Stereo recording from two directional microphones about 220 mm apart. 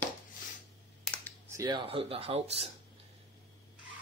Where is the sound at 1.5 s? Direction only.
20° right (ahead or behind).